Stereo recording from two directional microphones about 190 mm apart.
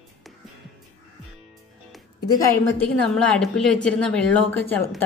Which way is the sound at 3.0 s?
5° left (ahead or behind).